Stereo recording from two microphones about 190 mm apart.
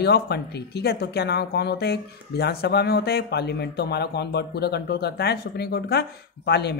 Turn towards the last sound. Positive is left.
turn(degrees=60)  # may be behind; listen again after turning